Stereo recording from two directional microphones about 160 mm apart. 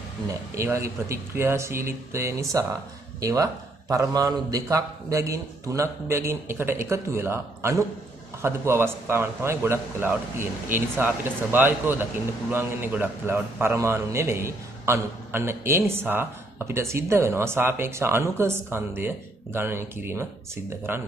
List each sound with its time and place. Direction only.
0.6 s a man's voice: 20° right (ahead or behind)